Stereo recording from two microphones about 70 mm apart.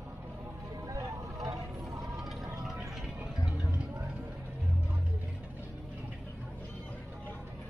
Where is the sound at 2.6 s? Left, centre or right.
Centre.